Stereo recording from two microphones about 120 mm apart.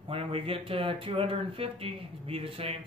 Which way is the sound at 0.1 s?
50° right (ahead or behind).